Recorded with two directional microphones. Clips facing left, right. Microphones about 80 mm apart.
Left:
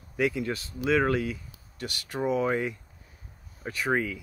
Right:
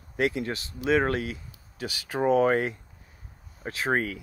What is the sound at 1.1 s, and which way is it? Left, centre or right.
Speech, right.